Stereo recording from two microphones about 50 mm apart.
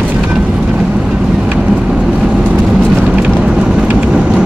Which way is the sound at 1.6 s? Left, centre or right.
Centre.